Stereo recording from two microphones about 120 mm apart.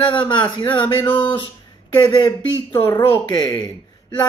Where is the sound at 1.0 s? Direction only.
15° left (ahead or behind).